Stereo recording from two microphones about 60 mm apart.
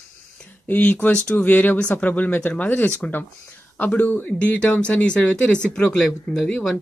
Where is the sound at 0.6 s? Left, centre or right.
Left.